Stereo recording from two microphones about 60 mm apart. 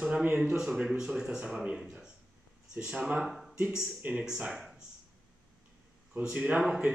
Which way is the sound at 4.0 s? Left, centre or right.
Right.